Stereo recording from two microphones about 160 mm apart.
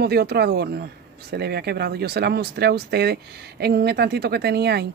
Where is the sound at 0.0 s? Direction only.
85° right.